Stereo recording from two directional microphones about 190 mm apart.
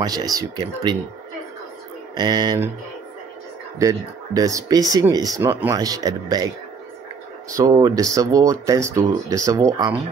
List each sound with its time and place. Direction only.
0.0 s speech: 20° right (ahead or behind)
2.1 s speech: 20° right (ahead or behind)
3.8 s speech: 20° right (ahead or behind)
7.5 s speech: 20° right (ahead or behind)